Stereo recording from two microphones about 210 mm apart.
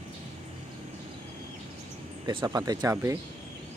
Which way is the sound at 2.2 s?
20° right (ahead or behind).